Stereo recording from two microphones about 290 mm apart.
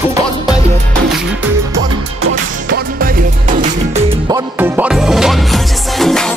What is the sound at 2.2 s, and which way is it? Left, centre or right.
Music, right.